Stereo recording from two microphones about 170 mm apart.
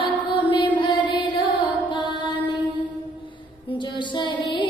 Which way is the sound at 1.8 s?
30° left (ahead or behind).